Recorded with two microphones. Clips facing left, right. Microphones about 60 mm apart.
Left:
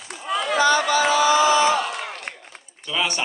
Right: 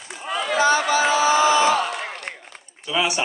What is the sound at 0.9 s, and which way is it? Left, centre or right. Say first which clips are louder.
Speech: even; right.